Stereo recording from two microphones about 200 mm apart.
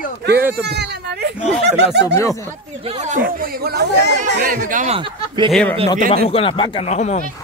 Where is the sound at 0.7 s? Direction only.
55° right (ahead or behind).